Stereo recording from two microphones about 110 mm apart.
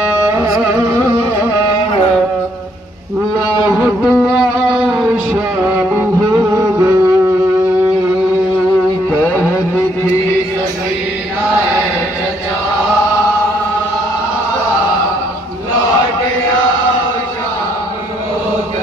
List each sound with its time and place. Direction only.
3.6 s a sound: 20° right (ahead or behind)
4.0 s music: 5° right (ahead or behind)
6.5 s music: 25° right (ahead or behind)